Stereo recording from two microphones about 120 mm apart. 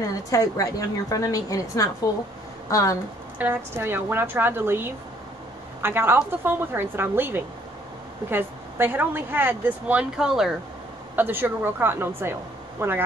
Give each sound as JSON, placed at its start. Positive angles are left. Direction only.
{"t": 0.0, "sound": "a woman's voice", "side_deg": 30}
{"t": 3.3, "sound": "a woman's voice", "side_deg": -15}
{"t": 11.1, "sound": "speech", "side_deg": -15}